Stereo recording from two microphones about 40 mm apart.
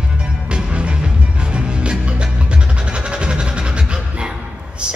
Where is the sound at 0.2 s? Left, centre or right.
Right.